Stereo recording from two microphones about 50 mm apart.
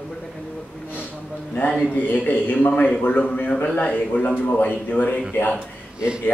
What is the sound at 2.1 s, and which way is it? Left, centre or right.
Speech, left.